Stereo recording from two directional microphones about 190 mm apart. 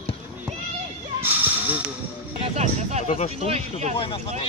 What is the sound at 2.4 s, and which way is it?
Speech, 35° right (ahead or behind).